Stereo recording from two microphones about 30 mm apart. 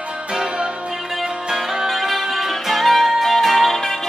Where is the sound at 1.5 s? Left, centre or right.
Centre.